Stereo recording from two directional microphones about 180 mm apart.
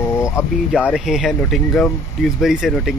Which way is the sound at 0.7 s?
5° right (ahead or behind).